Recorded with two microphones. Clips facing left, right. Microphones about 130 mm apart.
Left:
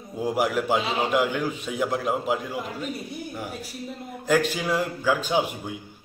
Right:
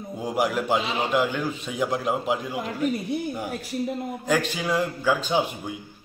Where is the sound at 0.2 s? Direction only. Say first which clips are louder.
Left 1 dB; 5° left (ahead or behind).